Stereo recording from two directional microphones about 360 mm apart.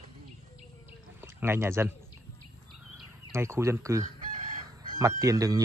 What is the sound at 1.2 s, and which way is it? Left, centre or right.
Speech, centre.